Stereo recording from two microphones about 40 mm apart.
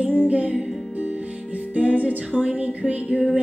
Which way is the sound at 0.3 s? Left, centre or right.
Right.